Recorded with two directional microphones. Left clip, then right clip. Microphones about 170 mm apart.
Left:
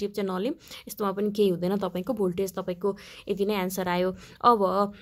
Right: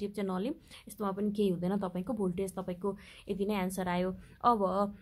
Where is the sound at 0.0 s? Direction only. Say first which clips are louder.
Left 7 dB; 20° left (ahead or behind).